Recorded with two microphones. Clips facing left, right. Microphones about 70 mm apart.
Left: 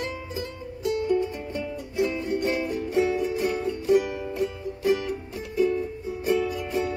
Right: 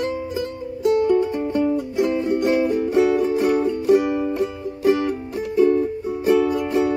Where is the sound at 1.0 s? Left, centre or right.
Right.